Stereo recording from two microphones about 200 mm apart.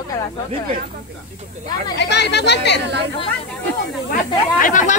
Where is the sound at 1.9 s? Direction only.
55° left (ahead or behind).